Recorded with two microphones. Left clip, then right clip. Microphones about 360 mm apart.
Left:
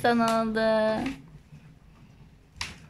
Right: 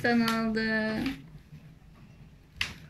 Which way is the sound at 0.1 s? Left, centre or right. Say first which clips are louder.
Left 4 dB; left.